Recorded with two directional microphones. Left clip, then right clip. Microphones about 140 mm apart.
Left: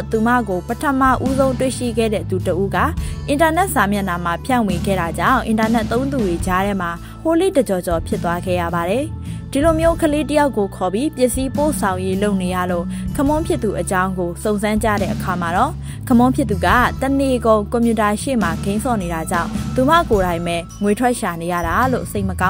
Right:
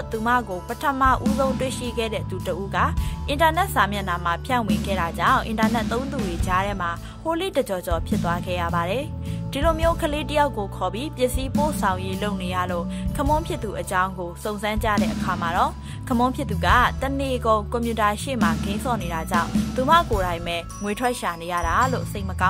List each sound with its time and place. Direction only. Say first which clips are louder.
0.1 s speech: left 5 dB; 35° left (ahead or behind)